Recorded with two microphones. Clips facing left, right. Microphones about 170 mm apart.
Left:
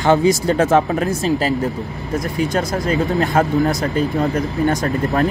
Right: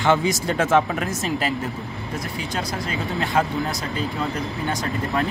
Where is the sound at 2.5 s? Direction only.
45° left (ahead or behind).